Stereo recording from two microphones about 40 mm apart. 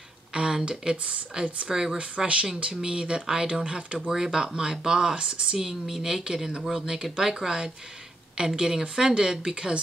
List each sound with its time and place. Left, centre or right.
0.3 s a sound: right
0.7 s speech: right
5.6 s speech: centre